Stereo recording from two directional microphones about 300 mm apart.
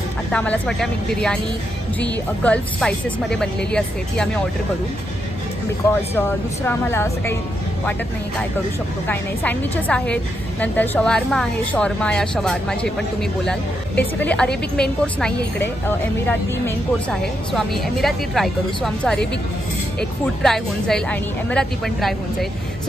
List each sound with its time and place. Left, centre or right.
0.3 s a woman's voice: centre
2.4 s a woman's voice: centre
6.1 s a woman's voice: centre
9.0 s a woman's voice: centre